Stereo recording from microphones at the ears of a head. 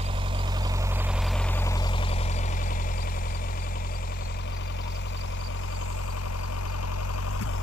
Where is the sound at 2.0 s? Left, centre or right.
Left.